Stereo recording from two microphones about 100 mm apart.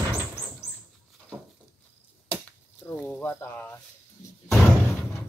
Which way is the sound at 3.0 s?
20° left (ahead or behind).